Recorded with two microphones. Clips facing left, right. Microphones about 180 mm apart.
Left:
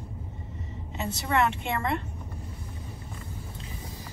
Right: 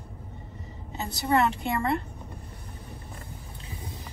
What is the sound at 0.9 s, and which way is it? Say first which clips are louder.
A woman's voice: right 2 dB; 35° right (ahead or behind).